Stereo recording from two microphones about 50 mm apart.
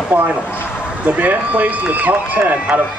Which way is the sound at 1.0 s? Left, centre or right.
Right.